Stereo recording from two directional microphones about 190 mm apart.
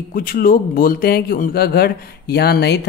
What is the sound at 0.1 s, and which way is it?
Speech, 50° left (ahead or behind).